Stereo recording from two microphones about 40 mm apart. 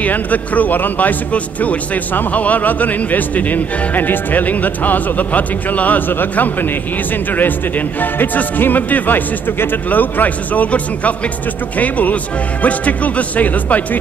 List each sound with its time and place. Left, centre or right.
0.0 s speech: left
8.0 s speech: left